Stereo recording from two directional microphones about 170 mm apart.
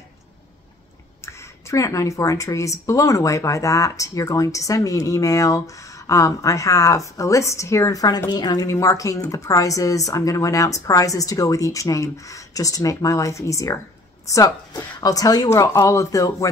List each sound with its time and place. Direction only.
1.2 s speech: 15° left (ahead or behind)